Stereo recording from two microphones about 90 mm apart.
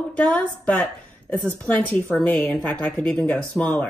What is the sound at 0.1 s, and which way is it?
A woman's voice, 10° left (ahead or behind).